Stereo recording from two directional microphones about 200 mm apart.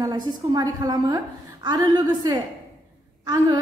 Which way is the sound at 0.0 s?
20° right (ahead or behind).